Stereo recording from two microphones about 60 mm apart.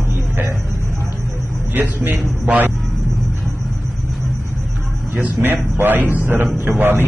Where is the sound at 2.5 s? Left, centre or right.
Right.